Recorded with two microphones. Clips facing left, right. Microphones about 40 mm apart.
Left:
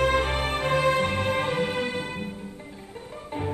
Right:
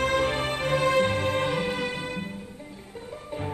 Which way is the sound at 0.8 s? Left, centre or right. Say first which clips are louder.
Right 2 dB; left.